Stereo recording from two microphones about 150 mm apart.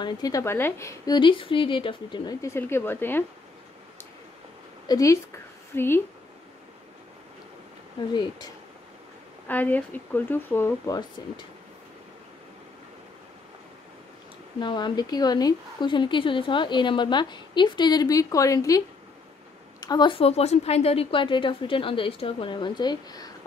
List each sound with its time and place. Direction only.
0.0 s a woman's voice: 25° left (ahead or behind)
2.4 s speech: 15° left (ahead or behind)
4.8 s a woman's voice: 25° left (ahead or behind)
8.1 s a woman's voice: 30° left (ahead or behind)
9.5 s speech: 10° left (ahead or behind)
10.9 s a woman's voice: 30° left (ahead or behind)
14.6 s a woman's voice: 30° left (ahead or behind)
19.8 s a woman's voice: 30° left (ahead or behind)